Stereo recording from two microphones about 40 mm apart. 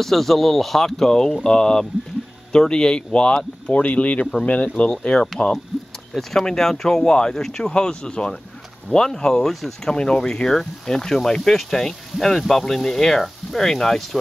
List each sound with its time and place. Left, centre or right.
0.0 s speech: centre; by 4.9 s left
4.9 s speech: centre
9.8 s speech: left